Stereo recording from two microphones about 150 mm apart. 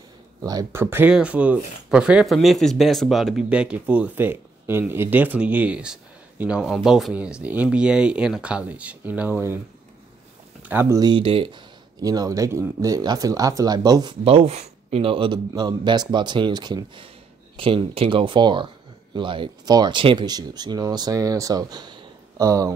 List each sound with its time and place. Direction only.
0.4 s speech: 25° right (ahead or behind)
0.8 s speech: 10° right (ahead or behind)
10.6 s speech: 15° right (ahead or behind)
11.0 s speech: 30° right (ahead or behind)
14.2 s a man's voice: 40° right (ahead or behind); by 22.7 s 20° right (ahead or behind)